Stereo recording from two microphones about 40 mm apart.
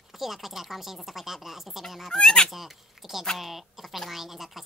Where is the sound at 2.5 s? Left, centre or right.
Centre.